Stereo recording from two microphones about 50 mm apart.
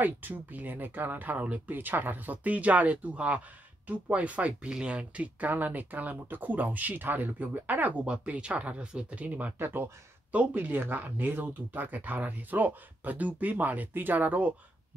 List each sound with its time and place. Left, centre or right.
0.0 s speech: right
8.0 s speech: right
9.6 s speech: right
10.3 s speech: right